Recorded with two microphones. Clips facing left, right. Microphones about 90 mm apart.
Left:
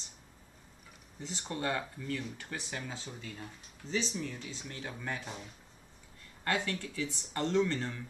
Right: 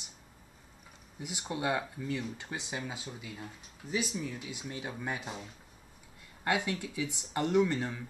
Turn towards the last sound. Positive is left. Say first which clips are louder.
# right 2 dB
turn(degrees=-15)  # may be behind; listen again after turning